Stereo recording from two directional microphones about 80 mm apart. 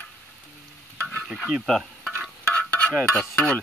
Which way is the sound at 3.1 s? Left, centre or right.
Centre.